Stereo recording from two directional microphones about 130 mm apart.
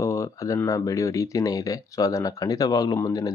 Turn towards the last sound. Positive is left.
turn(degrees=25)  # may be behind; listen again after turning